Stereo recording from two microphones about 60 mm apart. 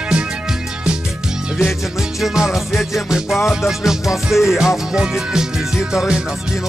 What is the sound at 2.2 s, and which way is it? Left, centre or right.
Music, centre.